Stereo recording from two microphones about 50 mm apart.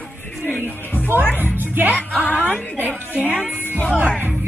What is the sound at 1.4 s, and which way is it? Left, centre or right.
Speech, right.